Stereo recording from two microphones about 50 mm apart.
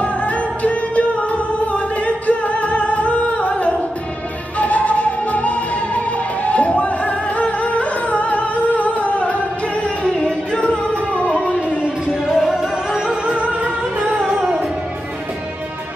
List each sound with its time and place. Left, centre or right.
0.0 s music: left
10.0 s music: centre
12.1 s music: centre; by 14.2 s right
14.2 s music: centre